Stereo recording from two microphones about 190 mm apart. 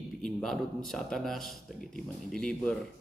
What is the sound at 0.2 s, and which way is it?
Speech, centre (ahead or behind).